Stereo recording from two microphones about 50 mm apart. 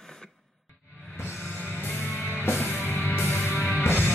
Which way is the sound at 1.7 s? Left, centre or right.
Left.